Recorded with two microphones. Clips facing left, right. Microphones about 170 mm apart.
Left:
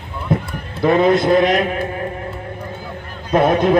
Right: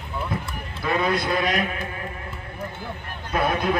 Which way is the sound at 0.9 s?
25° left (ahead or behind).